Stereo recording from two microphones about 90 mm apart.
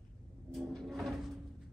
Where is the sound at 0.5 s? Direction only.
Centre (ahead or behind).